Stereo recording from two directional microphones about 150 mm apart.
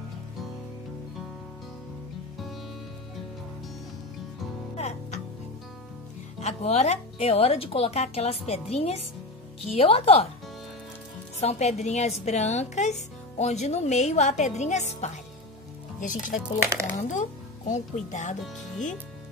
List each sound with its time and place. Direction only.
4.7 s music: 45° left (ahead or behind)
6.4 s a woman's voice: 45° left (ahead or behind)
11.3 s a woman's voice: 50° left (ahead or behind)
16.8 s speech: 20° right (ahead or behind)
17.1 s speech: 55° left (ahead or behind)